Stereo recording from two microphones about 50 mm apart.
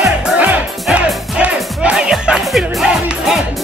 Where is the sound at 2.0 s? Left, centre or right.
Centre.